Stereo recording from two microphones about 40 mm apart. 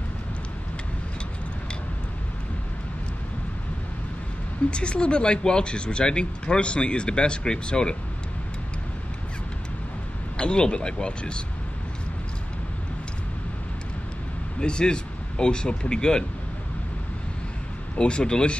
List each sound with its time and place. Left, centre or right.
4.6 s speech: left
10.3 s speech: left
14.6 s speech: left
17.9 s speech: left